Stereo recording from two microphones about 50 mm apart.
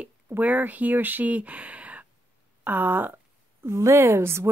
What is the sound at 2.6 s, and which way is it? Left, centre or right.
Speech, right.